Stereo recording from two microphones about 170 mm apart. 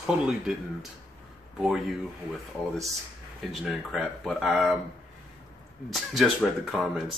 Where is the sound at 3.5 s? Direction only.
Centre (ahead or behind).